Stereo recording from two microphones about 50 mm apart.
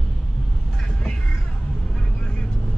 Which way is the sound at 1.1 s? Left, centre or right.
Centre.